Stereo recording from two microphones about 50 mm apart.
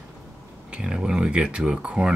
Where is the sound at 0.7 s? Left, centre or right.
Right.